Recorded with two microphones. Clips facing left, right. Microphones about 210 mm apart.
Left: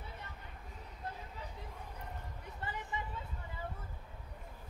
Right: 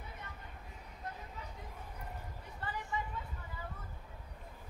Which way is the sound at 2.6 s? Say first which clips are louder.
Right 2 dB; 20° left (ahead or behind).